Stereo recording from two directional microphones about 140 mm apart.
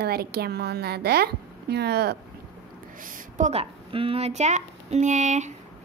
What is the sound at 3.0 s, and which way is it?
Speech, 70° right (ahead or behind).